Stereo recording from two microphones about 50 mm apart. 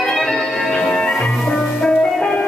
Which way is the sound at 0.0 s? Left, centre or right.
Centre.